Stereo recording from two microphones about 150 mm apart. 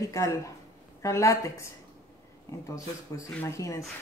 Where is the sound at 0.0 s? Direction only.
20° left (ahead or behind).